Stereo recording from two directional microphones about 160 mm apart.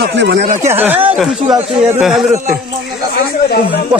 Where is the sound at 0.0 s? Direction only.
90° right.